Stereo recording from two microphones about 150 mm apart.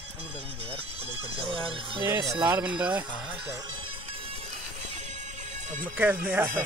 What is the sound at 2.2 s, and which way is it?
Speech, centre (ahead or behind).